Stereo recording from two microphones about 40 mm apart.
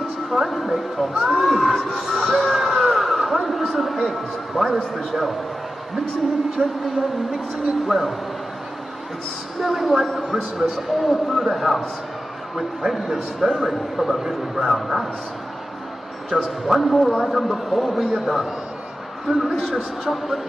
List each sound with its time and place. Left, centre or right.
0.3 s a man's voice: centre
6.5 s a man's voice: centre
9.6 s a man's voice: centre
10.2 s speech: centre
11.0 s a man's voice: centre
16.3 s a man's voice: right
16.6 s a man's voice: centre